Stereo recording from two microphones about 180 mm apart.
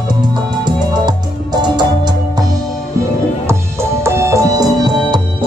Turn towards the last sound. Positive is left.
turn(degrees=-25)  # may be behind; listen again after turning